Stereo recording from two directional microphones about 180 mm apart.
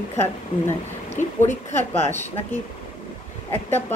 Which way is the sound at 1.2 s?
45° left (ahead or behind).